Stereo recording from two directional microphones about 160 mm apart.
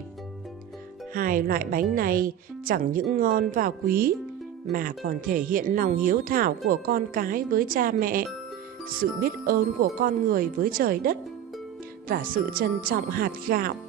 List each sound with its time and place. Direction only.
1.1 s speech: 60° right (ahead or behind)